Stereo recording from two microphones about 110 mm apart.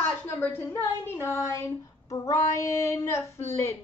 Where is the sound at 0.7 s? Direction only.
25° left (ahead or behind).